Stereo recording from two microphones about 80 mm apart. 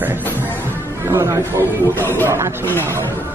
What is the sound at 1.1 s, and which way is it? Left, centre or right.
Speech, right.